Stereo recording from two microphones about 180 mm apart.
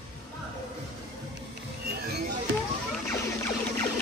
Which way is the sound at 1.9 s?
65° right (ahead or behind).